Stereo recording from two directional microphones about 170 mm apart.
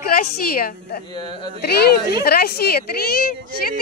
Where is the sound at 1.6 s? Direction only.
65° left (ahead or behind).